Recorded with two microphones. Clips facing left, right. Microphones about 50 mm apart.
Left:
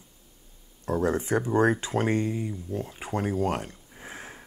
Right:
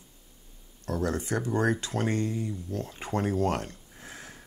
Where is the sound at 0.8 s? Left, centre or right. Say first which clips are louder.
Left 4 dB; centre.